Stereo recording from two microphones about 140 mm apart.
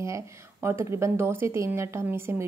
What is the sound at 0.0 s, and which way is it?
A woman's voice, 20° right (ahead or behind).